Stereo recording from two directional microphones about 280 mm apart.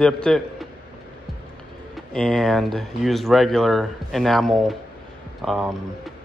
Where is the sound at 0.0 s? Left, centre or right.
Centre.